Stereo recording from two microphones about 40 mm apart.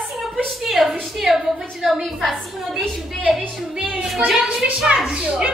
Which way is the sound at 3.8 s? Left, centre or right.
Right.